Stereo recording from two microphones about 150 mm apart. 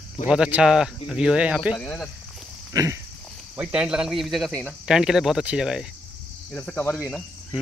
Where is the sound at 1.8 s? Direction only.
10° left (ahead or behind).